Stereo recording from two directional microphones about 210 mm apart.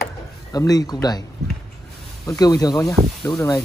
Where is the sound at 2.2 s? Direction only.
15° left (ahead or behind).